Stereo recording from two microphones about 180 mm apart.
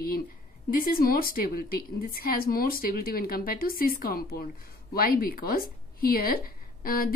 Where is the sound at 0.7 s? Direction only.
55° left (ahead or behind).